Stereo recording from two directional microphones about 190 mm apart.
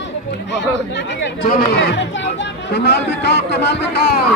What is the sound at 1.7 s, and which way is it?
Speech, 60° left (ahead or behind).